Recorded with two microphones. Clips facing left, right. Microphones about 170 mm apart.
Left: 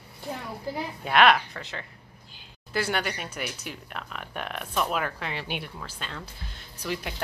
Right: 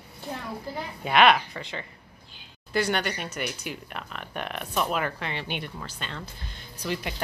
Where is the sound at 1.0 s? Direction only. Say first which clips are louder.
Right 1 dB; centre (ahead or behind).